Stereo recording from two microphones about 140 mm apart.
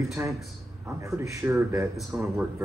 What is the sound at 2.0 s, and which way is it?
Speech, centre (ahead or behind).